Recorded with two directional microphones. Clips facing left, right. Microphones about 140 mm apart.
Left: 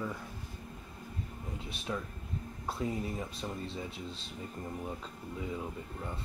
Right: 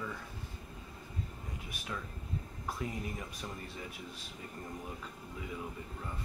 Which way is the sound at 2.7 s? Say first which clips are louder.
Left 4 dB; 25° left (ahead or behind).